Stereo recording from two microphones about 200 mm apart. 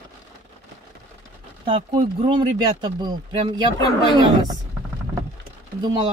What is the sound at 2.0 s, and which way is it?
Speech, 25° right (ahead or behind).